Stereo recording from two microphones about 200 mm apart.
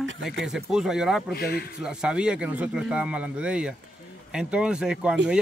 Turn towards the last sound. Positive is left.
turn(degrees=-5)  # may be behind; listen again after turning